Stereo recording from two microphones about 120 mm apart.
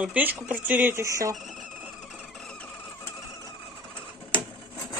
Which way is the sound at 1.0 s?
30° right (ahead or behind).